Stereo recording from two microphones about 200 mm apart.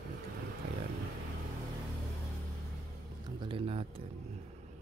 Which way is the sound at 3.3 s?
25° right (ahead or behind).